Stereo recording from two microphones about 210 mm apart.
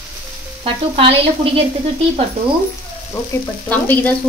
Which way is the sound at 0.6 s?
25° right (ahead or behind).